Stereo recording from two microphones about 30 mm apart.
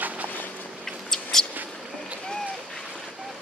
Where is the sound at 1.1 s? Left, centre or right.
Centre.